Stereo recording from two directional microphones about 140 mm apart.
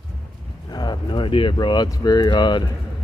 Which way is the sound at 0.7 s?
30° left (ahead or behind).